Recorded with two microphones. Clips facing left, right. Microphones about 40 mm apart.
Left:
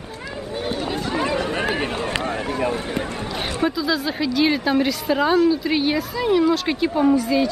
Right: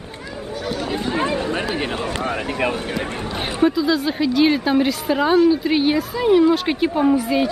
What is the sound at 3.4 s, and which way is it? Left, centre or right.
Speech, centre.